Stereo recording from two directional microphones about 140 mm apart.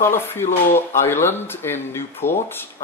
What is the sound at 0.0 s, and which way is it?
Speech, 15° left (ahead or behind).